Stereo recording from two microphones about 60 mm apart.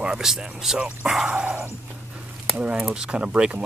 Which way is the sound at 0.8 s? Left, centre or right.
Centre.